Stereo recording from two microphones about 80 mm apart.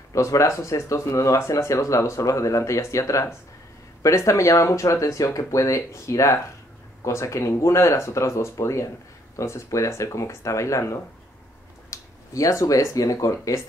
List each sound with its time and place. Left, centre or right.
0.1 s speech: left